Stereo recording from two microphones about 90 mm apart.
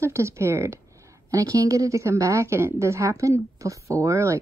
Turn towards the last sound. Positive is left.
turn(degrees=-35)  # may be behind; listen again after turning